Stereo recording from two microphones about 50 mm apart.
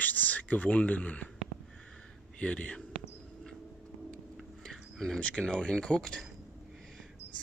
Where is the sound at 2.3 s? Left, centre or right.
Left.